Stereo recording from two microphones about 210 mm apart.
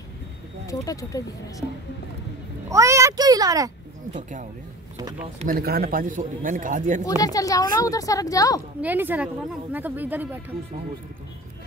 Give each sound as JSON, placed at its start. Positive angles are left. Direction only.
{"t": 0.7, "sound": "a woman's voice", "side_deg": 15}
{"t": 2.7, "sound": "speech", "side_deg": -15}
{"t": 4.1, "sound": "a man's voice", "side_deg": -35}
{"t": 7.1, "sound": "a woman's voice", "side_deg": 15}
{"t": 8.8, "sound": "speech", "side_deg": -10}